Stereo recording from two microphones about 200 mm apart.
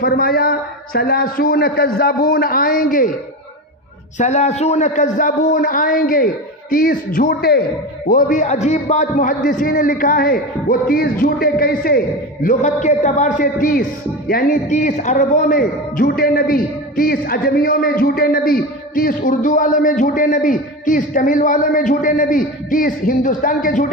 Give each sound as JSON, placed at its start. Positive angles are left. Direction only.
{"t": 0.0, "sound": "a man's voice", "side_deg": 50}
{"t": 4.2, "sound": "a man's voice", "side_deg": 35}
{"t": 8.1, "sound": "a man's voice", "side_deg": 40}
{"t": 12.4, "sound": "a man's voice", "side_deg": 40}